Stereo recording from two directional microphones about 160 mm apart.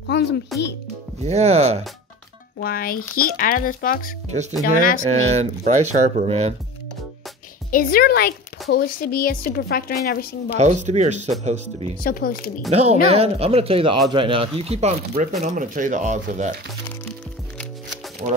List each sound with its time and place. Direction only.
0.0 s speech: 90° left
1.2 s speech: 45° right (ahead or behind)
2.6 s speech: 65° left (ahead or behind)
4.3 s speech: 45° right (ahead or behind)
4.6 s speech: 60° left (ahead or behind)
5.2 s speech: 45° right (ahead or behind)
7.7 s speech: 65° left (ahead or behind)
10.6 s speech: 45° right (ahead or behind)
12.0 s speech: 65° left (ahead or behind)
12.7 s speech: 45° right (ahead or behind)
18.2 s speech: 40° right (ahead or behind)